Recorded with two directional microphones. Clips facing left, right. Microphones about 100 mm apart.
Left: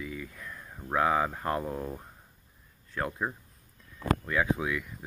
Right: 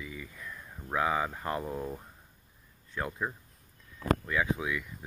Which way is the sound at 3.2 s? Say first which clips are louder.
Left 2 dB; 20° left (ahead or behind).